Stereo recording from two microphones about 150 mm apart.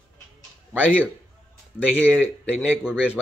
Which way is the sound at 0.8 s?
10° right (ahead or behind).